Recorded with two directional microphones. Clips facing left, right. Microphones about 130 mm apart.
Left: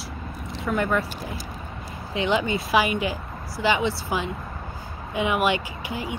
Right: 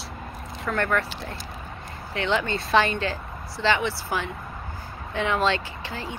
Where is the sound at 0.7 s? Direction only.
15° left (ahead or behind).